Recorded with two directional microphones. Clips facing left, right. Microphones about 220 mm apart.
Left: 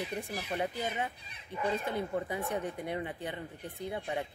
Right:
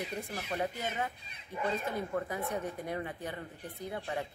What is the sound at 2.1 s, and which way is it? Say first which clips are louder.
A woman's voice: left 1 dB; 15° left (ahead or behind).